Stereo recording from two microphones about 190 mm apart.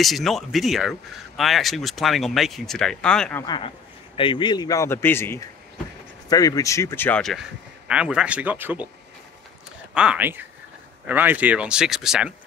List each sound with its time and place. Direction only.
0.0 s speech: centre (ahead or behind)
3.4 s speech: 25° left (ahead or behind); by 8.8 s 10° right (ahead or behind)
9.9 s speech: 5° right (ahead or behind)